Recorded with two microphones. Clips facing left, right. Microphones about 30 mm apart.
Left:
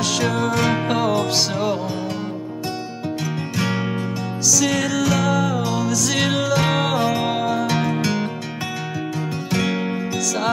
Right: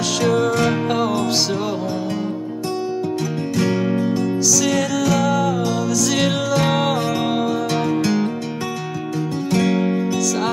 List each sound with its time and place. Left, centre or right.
0.2 s music: centre
3.5 s music: centre
4.5 s music: centre
9.5 s music: centre